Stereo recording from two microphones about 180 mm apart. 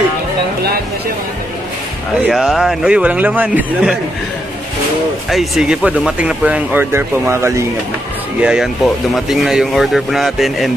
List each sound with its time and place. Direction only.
2.2 s speech: centre (ahead or behind)
5.3 s speech: centre (ahead or behind)
8.4 s speech: 5° right (ahead or behind)